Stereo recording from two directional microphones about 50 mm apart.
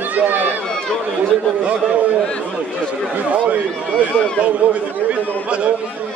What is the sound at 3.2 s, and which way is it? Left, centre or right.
A man's voice, right.